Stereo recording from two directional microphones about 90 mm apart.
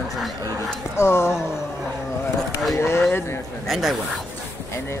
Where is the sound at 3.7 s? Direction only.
Centre (ahead or behind).